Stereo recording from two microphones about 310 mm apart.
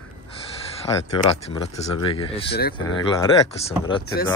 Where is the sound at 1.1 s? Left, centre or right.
Centre.